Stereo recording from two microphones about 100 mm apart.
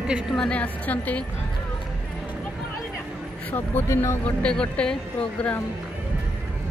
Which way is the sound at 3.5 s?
20° left (ahead or behind).